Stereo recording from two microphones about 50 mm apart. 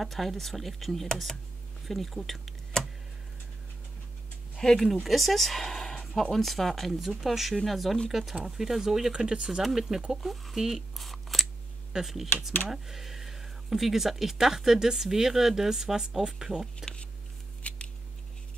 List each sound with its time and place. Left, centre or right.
0.0 s speech: centre
4.6 s speech: centre
5.0 s speech: centre
9.1 s speech: centre
16.8 s a sound: centre
17.6 s scissors: left